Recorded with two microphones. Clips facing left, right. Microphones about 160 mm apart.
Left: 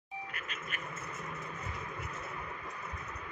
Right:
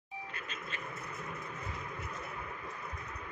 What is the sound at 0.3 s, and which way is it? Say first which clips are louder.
Frog: even; 25° right (ahead or behind).